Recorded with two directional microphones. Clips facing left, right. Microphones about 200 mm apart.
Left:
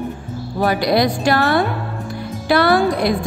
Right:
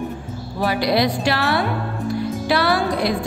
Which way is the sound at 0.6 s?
45° left (ahead or behind).